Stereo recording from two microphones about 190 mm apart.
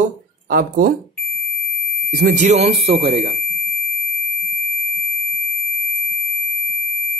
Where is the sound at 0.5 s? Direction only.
50° right (ahead or behind).